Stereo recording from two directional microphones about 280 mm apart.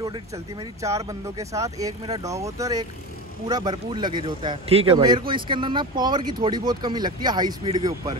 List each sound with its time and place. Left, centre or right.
0.0 s a man's voice: centre